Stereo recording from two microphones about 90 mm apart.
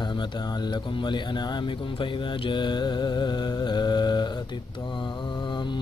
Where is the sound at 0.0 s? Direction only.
60° left (ahead or behind).